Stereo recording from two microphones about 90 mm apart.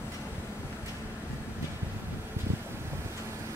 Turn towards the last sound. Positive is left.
turn(degrees=-30)  # may be behind; listen again after turning